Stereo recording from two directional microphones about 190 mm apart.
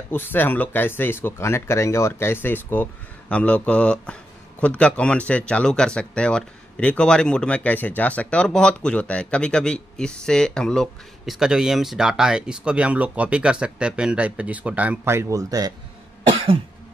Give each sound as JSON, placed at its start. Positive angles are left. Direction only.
{"t": 0.1, "sound": "speech", "side_deg": 10}
{"t": 16.3, "sound": "cough", "side_deg": -30}